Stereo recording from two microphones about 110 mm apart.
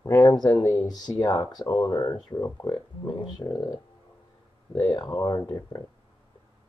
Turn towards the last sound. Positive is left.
turn(degrees=35)  # may be behind; listen again after turning